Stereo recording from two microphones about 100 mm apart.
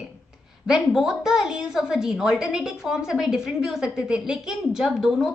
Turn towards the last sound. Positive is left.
turn(degrees=-5)  # may be behind; listen again after turning